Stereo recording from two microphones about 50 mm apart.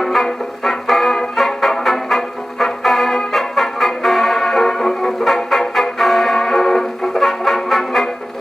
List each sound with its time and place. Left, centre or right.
0.0 s music: centre